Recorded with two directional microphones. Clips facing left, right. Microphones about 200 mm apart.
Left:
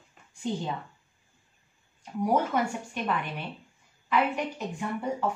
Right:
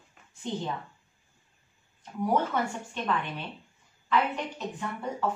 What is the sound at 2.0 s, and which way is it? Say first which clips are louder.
A woman's voice: left 1 dB; 10° left (ahead or behind).